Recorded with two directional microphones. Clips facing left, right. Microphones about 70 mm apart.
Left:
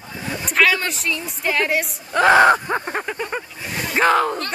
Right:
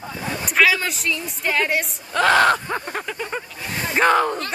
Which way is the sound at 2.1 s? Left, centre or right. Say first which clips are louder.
Left 3 dB; centre.